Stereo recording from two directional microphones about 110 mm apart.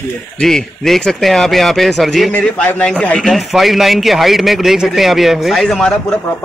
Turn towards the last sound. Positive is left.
turn(degrees=5)  # may be behind; listen again after turning